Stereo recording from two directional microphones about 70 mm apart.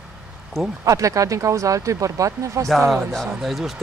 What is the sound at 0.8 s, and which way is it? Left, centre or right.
Speech, right.